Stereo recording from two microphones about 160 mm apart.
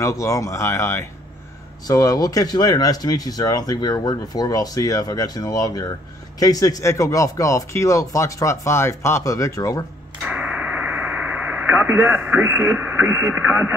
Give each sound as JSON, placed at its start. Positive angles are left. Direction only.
{"t": 0.0, "sound": "speech", "side_deg": 20}
{"t": 10.2, "sound": "radio", "side_deg": -10}